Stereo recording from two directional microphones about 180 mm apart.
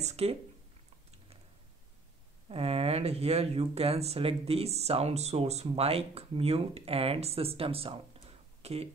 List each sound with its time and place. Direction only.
0.0 s speech: 35° right (ahead or behind)
2.5 s speech: 35° right (ahead or behind)